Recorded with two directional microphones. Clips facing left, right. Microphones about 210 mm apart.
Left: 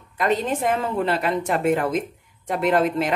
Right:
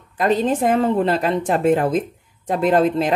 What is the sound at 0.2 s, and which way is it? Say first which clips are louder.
A woman's voice: right 4 dB; 35° right (ahead or behind).